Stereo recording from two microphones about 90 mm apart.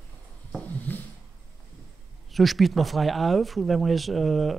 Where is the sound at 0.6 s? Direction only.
20° left (ahead or behind).